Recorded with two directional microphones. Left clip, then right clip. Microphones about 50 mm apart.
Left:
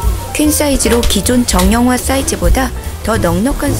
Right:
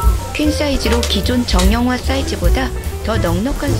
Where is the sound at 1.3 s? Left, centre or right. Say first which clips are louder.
Left 8 dB; left.